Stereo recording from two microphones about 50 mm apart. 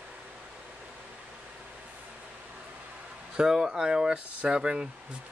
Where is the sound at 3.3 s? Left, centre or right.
Centre.